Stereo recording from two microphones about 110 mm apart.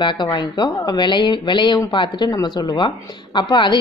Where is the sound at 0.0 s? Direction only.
45° left (ahead or behind).